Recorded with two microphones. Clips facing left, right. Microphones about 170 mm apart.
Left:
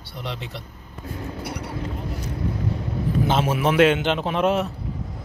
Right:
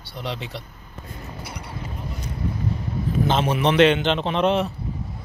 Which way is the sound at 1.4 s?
65° left (ahead or behind).